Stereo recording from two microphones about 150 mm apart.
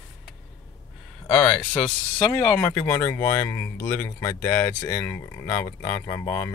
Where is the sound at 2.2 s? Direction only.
20° left (ahead or behind).